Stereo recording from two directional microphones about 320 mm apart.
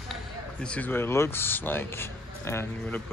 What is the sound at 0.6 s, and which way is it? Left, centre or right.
Speech, centre.